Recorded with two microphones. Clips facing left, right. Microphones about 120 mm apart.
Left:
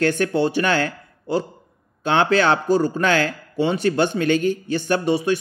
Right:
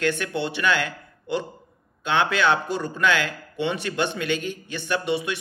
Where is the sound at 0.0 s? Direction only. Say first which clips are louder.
Left 6 dB; 40° left (ahead or behind).